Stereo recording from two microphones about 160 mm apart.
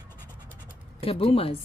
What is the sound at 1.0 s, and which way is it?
Speech, 35° left (ahead or behind).